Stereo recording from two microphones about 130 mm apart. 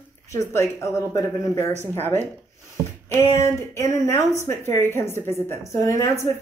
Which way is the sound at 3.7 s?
25° left (ahead or behind).